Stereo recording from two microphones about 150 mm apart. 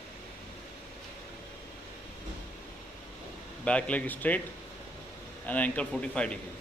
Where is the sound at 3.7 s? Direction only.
10° left (ahead or behind).